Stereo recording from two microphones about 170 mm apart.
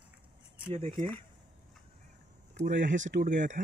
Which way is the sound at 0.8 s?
50° right (ahead or behind).